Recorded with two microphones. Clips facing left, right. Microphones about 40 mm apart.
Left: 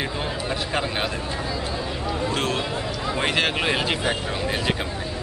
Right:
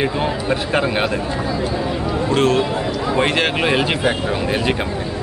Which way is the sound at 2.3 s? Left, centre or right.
Centre.